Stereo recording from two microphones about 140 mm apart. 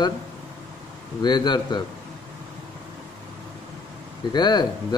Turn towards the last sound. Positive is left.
turn(degrees=30)  # may be behind; listen again after turning